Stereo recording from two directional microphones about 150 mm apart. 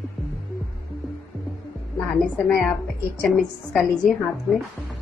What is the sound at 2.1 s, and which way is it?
A woman's voice, centre (ahead or behind).